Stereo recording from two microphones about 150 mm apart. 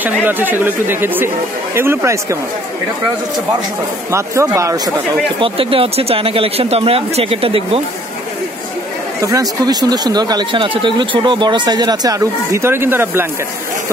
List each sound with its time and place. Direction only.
0.0 s speech: 10° right (ahead or behind)
4.1 s speech: 20° right (ahead or behind)
5.4 s speech: 35° right (ahead or behind)
9.2 s speech: 25° right (ahead or behind)